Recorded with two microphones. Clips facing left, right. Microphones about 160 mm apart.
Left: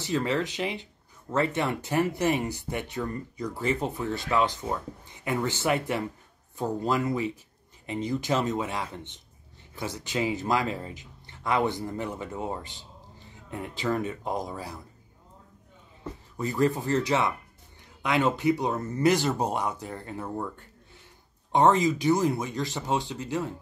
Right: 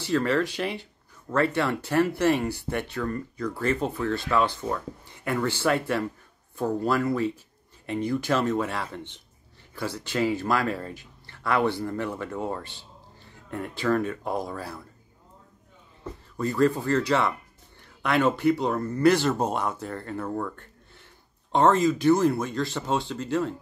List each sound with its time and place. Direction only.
0.0 s a man's voice: 15° left (ahead or behind)
16.5 s speech: 15° left (ahead or behind)